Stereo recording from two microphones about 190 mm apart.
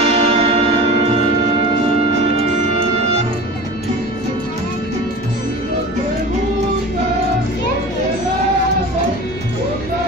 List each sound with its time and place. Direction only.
0.0 s church bell: 35° right (ahead or behind)